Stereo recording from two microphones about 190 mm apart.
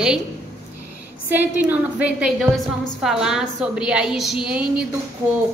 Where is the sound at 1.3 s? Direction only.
10° right (ahead or behind).